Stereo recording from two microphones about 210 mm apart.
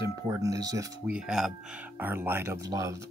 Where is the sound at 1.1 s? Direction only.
5° right (ahead or behind).